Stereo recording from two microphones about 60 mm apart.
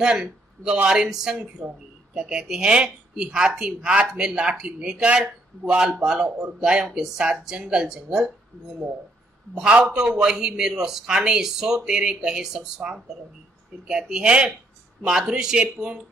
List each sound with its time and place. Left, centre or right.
0.0 s a man's voice: centre
9.9 s speech: centre